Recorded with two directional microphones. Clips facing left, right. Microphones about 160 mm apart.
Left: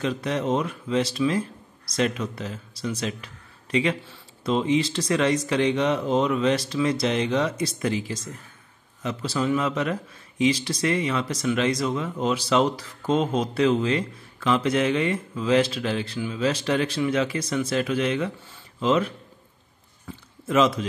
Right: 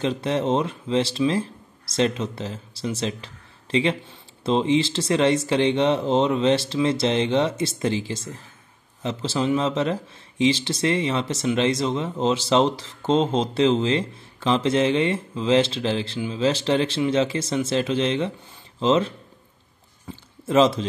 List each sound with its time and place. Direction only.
0.0 s speech: 30° right (ahead or behind)
20.4 s speech: 30° right (ahead or behind)